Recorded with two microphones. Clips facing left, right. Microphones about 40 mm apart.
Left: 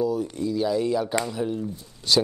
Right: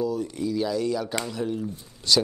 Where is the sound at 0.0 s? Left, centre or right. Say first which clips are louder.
Left 2 dB; centre.